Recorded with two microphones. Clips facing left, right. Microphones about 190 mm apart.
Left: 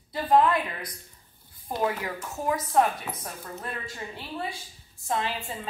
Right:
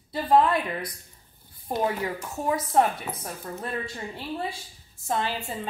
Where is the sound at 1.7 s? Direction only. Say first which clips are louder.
Right 2 dB; 25° right (ahead or behind).